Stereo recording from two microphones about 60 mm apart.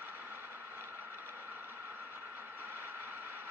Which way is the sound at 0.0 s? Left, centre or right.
Right.